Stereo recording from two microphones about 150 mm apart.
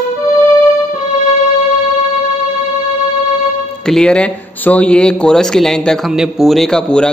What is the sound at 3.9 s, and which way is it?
Speech, 5° left (ahead or behind).